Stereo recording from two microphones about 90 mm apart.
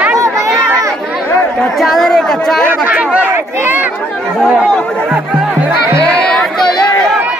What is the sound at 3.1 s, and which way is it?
Speech, 25° right (ahead or behind).